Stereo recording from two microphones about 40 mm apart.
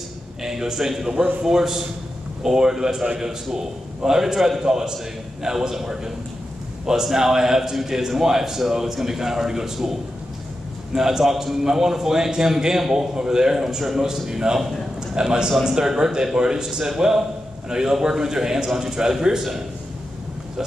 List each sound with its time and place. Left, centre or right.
0.4 s a man's voice: centre
11.0 s a man's voice: centre